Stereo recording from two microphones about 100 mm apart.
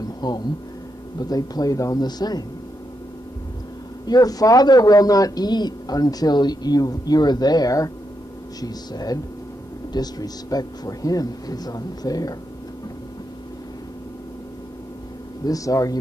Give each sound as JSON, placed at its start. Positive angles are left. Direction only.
{"t": 0.2, "sound": "a man's voice", "side_deg": 40}
{"t": 4.0, "sound": "a man's voice", "side_deg": 40}
{"t": 15.4, "sound": "a man's voice", "side_deg": 35}